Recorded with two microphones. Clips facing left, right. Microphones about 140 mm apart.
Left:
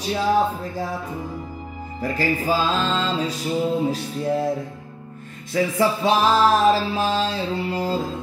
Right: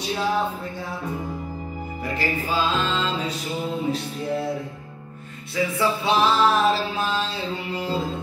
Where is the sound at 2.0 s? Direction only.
40° left (ahead or behind).